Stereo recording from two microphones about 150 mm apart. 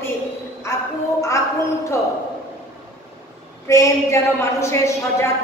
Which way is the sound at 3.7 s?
20° left (ahead or behind).